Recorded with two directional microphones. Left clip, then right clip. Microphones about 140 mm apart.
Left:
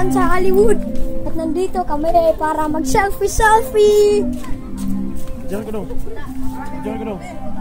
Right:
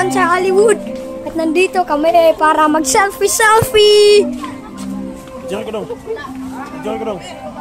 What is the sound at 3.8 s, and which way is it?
Speech, 35° right (ahead or behind).